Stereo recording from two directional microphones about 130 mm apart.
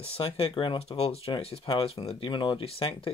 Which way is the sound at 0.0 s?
45° left (ahead or behind).